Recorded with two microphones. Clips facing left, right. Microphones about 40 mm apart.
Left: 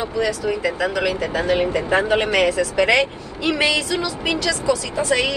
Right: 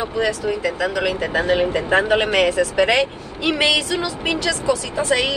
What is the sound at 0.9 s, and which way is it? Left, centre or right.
Speech, right.